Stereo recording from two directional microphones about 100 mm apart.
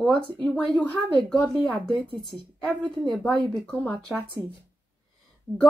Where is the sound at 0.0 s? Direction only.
10° left (ahead or behind).